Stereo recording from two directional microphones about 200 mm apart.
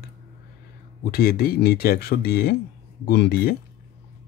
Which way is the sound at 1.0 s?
50° left (ahead or behind).